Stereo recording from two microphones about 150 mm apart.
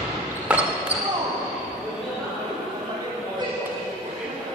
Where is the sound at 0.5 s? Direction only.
10° right (ahead or behind).